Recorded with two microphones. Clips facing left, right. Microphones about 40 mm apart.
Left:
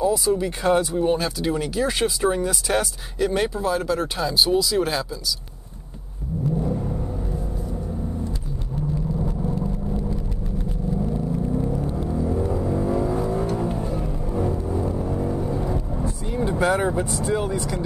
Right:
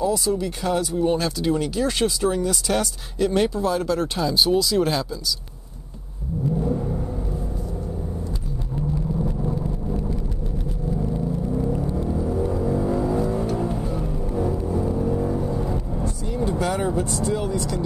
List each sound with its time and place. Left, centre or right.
0.0 s speech: centre
0.3 s speech: left
1.0 s speech: centre
6.5 s vehicle: centre
11.4 s music: centre
12.4 s vehicle: centre
13.4 s music: centre
16.3 s vehicle: left
17.1 s speech: centre